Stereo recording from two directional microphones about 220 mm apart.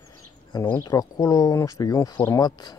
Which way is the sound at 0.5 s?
15° left (ahead or behind).